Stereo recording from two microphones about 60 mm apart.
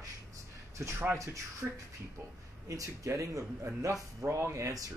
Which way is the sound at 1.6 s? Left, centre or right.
Centre.